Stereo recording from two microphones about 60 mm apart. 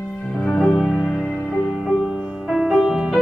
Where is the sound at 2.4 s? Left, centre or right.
Centre.